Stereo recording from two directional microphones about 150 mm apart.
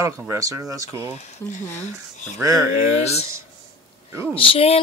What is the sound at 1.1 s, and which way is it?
Speech, 50° left (ahead or behind).